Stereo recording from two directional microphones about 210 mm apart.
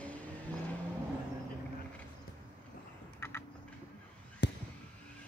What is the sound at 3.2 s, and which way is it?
Typing, 10° left (ahead or behind).